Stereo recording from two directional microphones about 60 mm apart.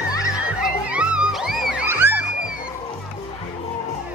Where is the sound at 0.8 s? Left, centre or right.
Centre.